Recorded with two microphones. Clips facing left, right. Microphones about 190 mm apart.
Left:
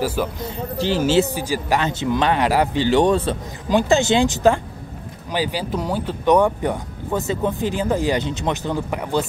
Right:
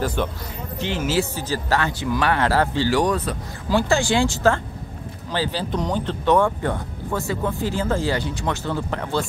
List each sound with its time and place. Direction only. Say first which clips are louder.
0.0 s speech: left 2 dB; 5° left (ahead or behind)
0.7 s speech: left 5 dB; 35° left (ahead or behind)
1.3 s speech: left 2 dB; 10° left (ahead or behind)